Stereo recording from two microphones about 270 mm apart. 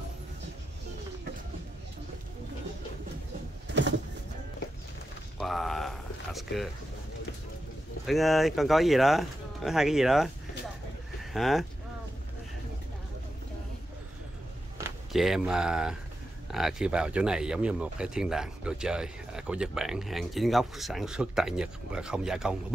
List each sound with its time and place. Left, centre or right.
3.6 s vehicle: right
5.4 s a sound: centre
8.1 s speech: centre
11.3 s speech: centre
14.8 s speech: centre